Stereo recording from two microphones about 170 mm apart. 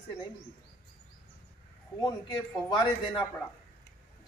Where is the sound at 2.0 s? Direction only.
20° left (ahead or behind).